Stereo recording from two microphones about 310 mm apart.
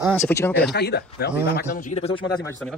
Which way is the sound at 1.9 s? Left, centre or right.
Centre.